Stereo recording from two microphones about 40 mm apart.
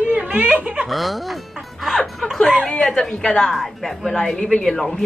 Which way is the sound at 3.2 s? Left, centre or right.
Centre.